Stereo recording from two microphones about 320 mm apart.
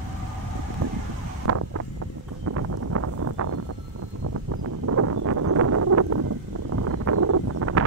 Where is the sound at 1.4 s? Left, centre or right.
Right.